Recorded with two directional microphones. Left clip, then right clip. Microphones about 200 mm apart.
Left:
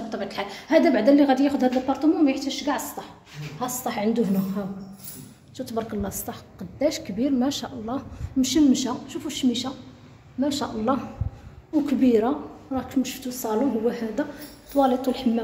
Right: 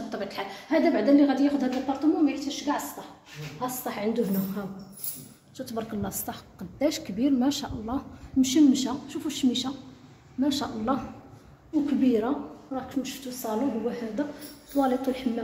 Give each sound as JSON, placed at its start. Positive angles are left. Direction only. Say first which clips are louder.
{"t": 0.1, "sound": "a woman's voice", "louder": "left 3 dB", "side_deg": 10}
{"t": 0.5, "sound": "a woman's voice", "louder": "left 5 dB", "side_deg": 25}
{"t": 5.6, "sound": "a woman's voice", "louder": "left 4 dB", "side_deg": 10}